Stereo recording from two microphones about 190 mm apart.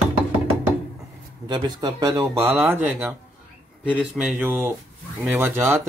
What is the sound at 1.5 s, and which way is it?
Speech, 20° right (ahead or behind).